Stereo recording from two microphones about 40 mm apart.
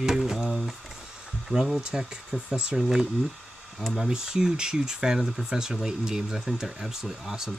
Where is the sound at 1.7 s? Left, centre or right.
Right.